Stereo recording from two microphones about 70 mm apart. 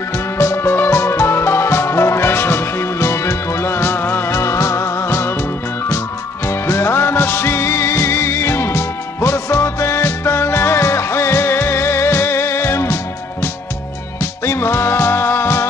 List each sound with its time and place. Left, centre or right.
0.4 s music: left
4.4 s music: left
6.4 s music: left